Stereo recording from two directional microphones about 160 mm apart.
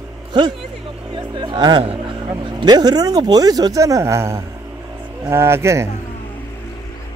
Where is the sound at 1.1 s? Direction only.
30° right (ahead or behind).